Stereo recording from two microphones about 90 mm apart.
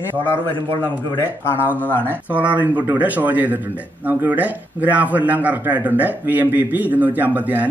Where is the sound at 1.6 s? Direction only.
20° left (ahead or behind).